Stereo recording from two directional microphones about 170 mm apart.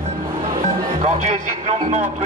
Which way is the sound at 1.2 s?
40° right (ahead or behind).